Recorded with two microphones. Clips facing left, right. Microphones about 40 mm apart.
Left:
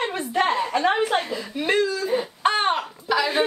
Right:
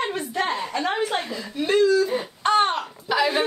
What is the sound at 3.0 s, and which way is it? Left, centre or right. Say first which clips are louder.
Speech: right 1 dB; centre.